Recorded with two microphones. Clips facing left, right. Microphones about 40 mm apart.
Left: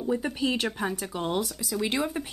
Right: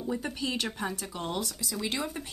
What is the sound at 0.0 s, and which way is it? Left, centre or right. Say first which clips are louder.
Speech: left 5 dB; centre.